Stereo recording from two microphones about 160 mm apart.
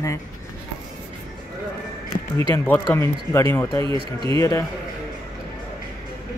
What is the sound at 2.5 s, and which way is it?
A man's voice, 10° left (ahead or behind).